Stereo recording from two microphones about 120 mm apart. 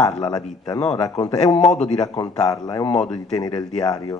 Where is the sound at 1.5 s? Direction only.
65° left (ahead or behind).